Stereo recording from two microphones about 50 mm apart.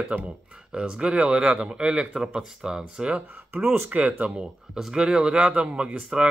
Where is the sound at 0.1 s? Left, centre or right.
Right.